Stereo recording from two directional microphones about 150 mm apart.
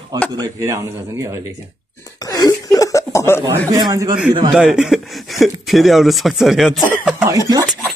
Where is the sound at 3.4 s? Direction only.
25° right (ahead or behind).